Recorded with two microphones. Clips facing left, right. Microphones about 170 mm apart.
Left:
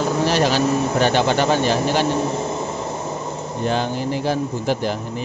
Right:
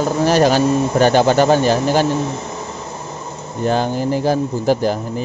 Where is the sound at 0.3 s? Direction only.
45° right (ahead or behind).